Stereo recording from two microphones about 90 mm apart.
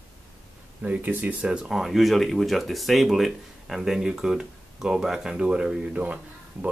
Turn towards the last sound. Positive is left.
turn(degrees=-15)  # may be behind; listen again after turning